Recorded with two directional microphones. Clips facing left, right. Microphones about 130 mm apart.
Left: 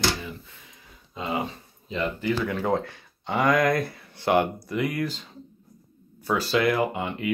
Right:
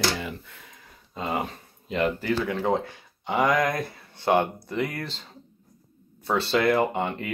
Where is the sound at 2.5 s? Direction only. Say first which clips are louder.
Even; 20° right (ahead or behind).